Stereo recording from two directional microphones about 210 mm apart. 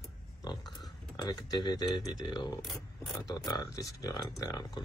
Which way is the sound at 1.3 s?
20° left (ahead or behind).